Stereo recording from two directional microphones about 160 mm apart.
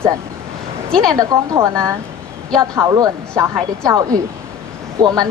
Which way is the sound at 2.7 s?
20° right (ahead or behind).